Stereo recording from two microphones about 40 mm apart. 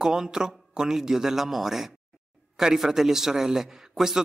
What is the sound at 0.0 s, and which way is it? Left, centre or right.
A man's voice, centre.